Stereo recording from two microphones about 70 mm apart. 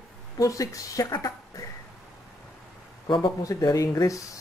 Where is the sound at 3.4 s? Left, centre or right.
Left.